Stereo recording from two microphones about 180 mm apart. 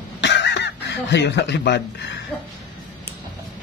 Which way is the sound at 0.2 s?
80° left.